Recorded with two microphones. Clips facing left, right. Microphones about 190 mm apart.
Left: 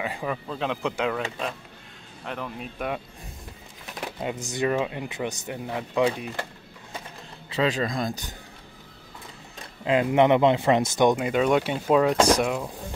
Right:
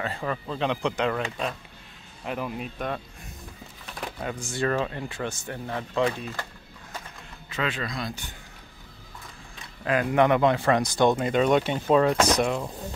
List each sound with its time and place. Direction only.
0.0 s speech: 10° left (ahead or behind); by 2.7 s 5° right (ahead or behind)
4.2 s speech: 20° left (ahead or behind)
7.4 s a man's voice: 35° left (ahead or behind)
9.8 s speech: 25° left (ahead or behind); by 12.7 s 5° left (ahead or behind)